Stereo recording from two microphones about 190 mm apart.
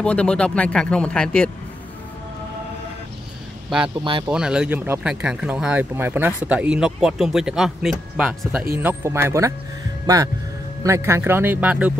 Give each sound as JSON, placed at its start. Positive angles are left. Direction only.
{"t": 0.0, "sound": "speech", "side_deg": 5}
{"t": 4.3, "sound": "speech", "side_deg": -5}